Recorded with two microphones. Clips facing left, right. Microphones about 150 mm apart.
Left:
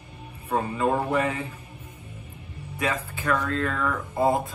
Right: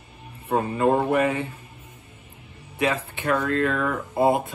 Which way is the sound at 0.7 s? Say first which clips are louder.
Right 4 dB; 30° right (ahead or behind).